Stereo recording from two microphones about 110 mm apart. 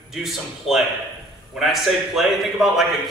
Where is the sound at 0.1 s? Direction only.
Centre (ahead or behind).